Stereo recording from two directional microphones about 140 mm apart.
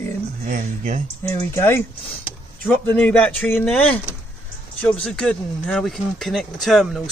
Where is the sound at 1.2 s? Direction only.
20° left (ahead or behind).